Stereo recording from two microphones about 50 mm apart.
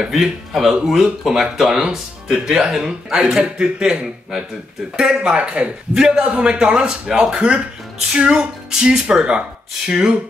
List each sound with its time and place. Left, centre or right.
0.0 s speech: centre